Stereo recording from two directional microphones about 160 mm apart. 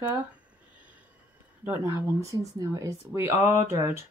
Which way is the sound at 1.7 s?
20° right (ahead or behind).